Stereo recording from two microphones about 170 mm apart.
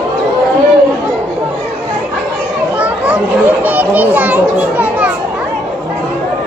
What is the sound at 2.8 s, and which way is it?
Children playing, 10° right (ahead or behind).